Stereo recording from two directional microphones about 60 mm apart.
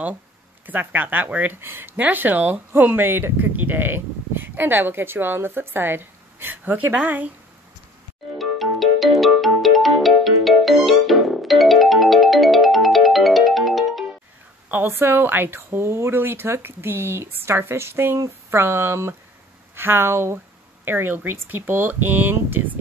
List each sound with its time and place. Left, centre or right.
0.7 s speech: right
2.0 s speech: right
8.4 s music: centre
14.7 s speech: right